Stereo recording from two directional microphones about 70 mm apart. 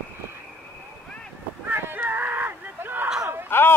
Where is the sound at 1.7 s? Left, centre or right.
Right.